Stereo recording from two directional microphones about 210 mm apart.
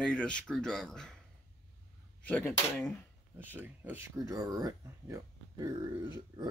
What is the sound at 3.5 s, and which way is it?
Speech, 10° right (ahead or behind).